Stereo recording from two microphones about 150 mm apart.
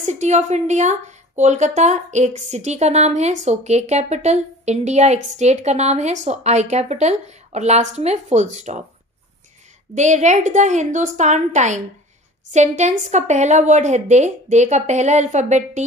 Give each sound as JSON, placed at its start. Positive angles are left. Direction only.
{"t": 0.0, "sound": "a woman's voice", "side_deg": -50}
{"t": 9.9, "sound": "a woman's voice", "side_deg": -50}